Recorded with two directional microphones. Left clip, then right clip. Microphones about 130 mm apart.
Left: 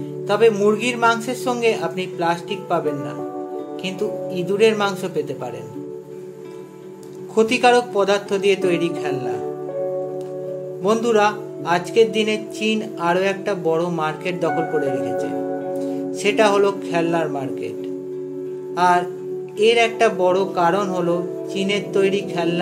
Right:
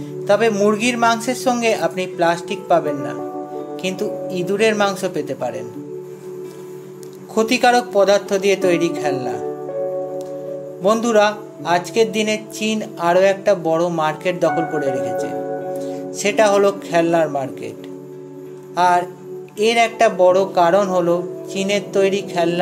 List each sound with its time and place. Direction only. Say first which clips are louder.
0.3 s speech: right 1 dB; 25° right (ahead or behind)
4.3 s speech: even; 30° right (ahead or behind)
7.3 s speech: even; 25° right (ahead or behind)
10.8 s speech: right 2 dB; 25° right (ahead or behind)
15.3 s music: right 1 dB; centre (ahead or behind)
15.8 s speech: even; 30° right (ahead or behind)
18.8 s music: right 2 dB; 30° right (ahead or behind)
19.6 s speech: right 1 dB; 30° right (ahead or behind)